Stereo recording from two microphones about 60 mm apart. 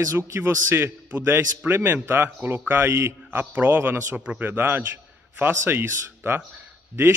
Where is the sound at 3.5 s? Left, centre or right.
Right.